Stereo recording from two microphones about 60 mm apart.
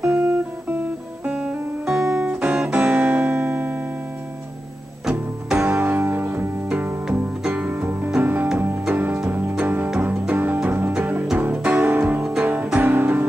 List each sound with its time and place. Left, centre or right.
0.0 s guitar: centre
2.0 s music: centre
2.2 s music: right
5.6 s music: right
10.3 s music: right
12.2 s music: centre
12.7 s music: right